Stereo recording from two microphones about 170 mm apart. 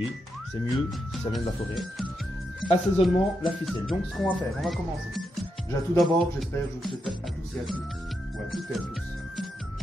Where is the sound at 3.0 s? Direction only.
Centre (ahead or behind).